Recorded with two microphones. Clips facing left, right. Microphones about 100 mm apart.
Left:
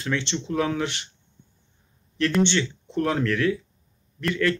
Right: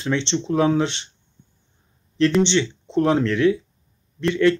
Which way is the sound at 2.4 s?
20° right (ahead or behind).